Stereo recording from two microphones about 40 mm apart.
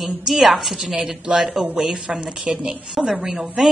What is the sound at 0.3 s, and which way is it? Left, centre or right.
A woman's voice, centre.